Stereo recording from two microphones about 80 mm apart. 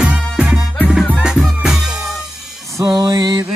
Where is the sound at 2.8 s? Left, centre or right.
Right.